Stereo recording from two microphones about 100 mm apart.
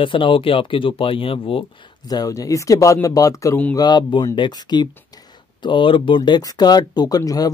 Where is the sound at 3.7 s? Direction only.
45° left (ahead or behind).